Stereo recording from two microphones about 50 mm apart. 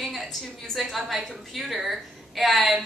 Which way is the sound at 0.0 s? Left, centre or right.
Centre.